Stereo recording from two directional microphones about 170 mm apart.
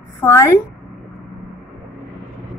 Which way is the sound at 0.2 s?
15° left (ahead or behind).